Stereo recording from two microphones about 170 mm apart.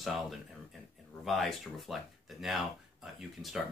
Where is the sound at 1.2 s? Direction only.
Centre (ahead or behind).